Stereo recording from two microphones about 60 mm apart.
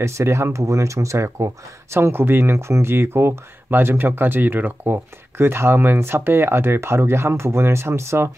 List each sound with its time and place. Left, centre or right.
0.0 s speech: right